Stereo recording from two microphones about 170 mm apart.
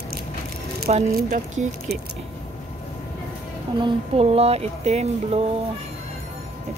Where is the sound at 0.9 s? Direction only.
45° right (ahead or behind).